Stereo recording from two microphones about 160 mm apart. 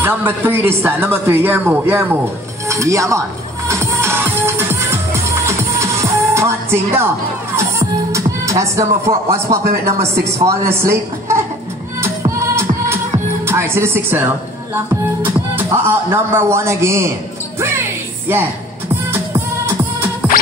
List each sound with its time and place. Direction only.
0.0 s speech: 15° right (ahead or behind)
2.7 s music: 20° right (ahead or behind)
9.8 s a woman's voice: 15° right (ahead or behind)
12.0 s music: 15° right (ahead or behind)
13.5 s speech: 15° right (ahead or behind)
19.1 s music: 15° right (ahead or behind)